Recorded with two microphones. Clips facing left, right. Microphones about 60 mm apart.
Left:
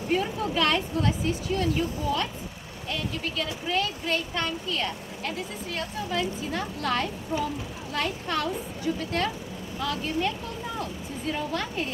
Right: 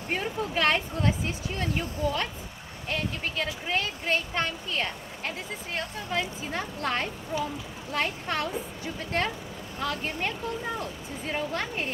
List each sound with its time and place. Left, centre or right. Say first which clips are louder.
0.1 s speech: left 3 dB; right